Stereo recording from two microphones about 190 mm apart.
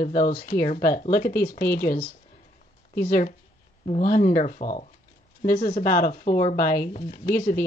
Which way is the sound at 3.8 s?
40° left (ahead or behind).